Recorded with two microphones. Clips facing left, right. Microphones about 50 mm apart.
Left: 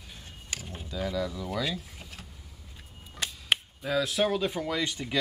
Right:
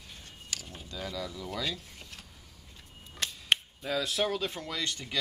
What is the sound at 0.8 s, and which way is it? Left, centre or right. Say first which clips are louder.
Speech: left 7 dB; centre.